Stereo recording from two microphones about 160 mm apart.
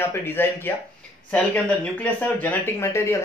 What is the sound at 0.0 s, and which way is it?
Speech, 15° left (ahead or behind).